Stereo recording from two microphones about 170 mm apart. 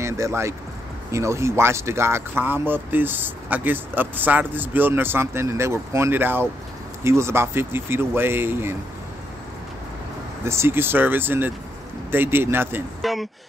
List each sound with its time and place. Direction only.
0.0 s speech: 15° right (ahead or behind)
10.4 s speech: 15° right (ahead or behind)
13.0 s speech: centre (ahead or behind)